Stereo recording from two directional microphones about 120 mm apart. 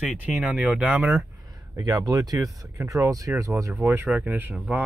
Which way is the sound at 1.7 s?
30° right (ahead or behind).